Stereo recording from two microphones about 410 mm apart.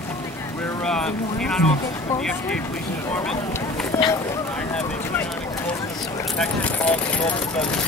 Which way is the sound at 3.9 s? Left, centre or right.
Centre.